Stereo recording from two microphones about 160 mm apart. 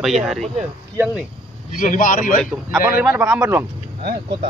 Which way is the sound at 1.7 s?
55° left (ahead or behind).